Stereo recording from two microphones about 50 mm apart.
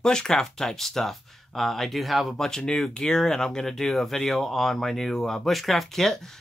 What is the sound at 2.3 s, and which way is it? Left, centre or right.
Speech, centre.